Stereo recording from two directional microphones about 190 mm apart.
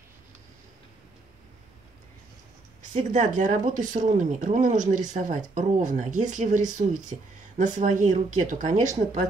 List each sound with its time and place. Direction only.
2.9 s speech: 40° right (ahead or behind)